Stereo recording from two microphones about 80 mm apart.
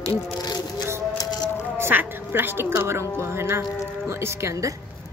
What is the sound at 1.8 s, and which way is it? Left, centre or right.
A woman's voice, right.